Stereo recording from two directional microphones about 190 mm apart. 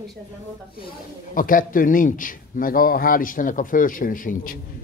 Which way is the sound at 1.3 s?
45° left (ahead or behind).